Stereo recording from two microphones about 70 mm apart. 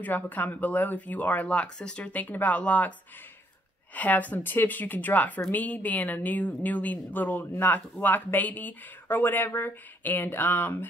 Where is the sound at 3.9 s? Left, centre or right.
Left.